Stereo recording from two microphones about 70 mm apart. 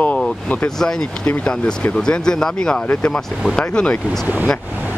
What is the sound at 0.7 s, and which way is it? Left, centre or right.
Speech, centre.